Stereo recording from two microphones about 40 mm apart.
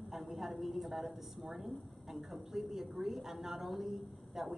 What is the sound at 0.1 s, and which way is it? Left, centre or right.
A man's voice, centre.